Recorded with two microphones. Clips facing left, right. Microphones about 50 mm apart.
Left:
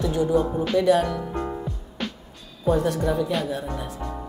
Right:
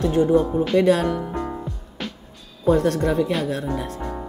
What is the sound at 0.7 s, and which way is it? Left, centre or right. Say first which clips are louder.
Speech: right 1 dB; right.